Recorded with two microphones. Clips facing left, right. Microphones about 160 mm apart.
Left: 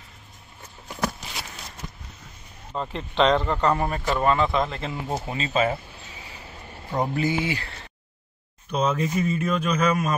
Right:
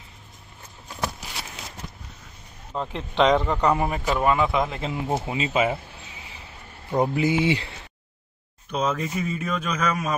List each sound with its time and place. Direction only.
2.7 s a man's voice: centre (ahead or behind)
6.9 s speech: 15° right (ahead or behind)
8.7 s speech: centre (ahead or behind)